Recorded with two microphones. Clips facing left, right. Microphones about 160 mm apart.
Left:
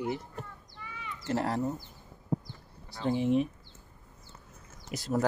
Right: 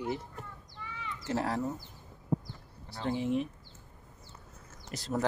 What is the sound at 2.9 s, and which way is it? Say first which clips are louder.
Speech: left 4 dB; 15° left (ahead or behind).